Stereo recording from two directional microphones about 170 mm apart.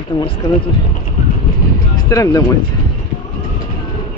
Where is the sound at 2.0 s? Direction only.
20° left (ahead or behind).